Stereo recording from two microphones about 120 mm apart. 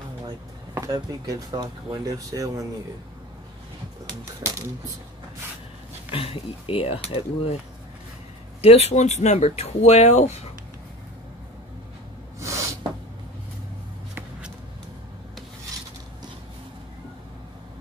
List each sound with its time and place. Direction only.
0.7 s speech: 30° right (ahead or behind)
4.5 s speech: 30° right (ahead or behind)
6.1 s speech: 50° left (ahead or behind)
8.5 s speech: 55° left (ahead or behind)
12.4 s a sound: 25° right (ahead or behind)